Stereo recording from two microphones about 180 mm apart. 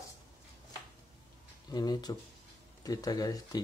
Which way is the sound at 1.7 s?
20° left (ahead or behind).